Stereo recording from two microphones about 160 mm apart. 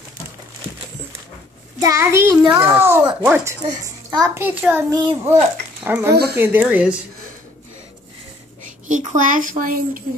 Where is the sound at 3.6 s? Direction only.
25° right (ahead or behind).